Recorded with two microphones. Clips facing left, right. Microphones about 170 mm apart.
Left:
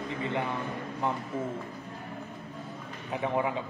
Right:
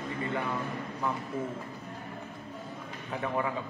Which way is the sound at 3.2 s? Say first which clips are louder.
Left 3 dB; 20° left (ahead or behind).